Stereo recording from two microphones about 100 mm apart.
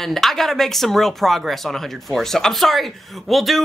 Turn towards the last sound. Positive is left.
turn(degrees=0)  # may be behind; listen again after turning